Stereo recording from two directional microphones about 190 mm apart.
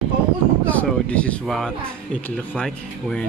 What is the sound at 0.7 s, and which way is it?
Speech, 5° left (ahead or behind).